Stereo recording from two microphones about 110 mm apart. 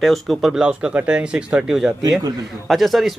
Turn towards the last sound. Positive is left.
turn(degrees=0)  # may be behind; listen again after turning